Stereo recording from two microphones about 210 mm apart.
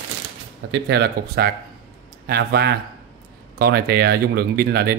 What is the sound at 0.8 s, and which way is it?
Speech, 50° right (ahead or behind).